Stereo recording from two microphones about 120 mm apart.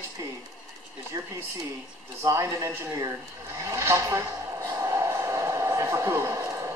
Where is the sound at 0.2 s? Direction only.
25° right (ahead or behind).